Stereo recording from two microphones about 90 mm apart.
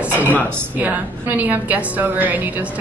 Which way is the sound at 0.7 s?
15° right (ahead or behind).